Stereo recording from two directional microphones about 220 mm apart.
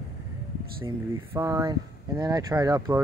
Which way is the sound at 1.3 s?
15° right (ahead or behind).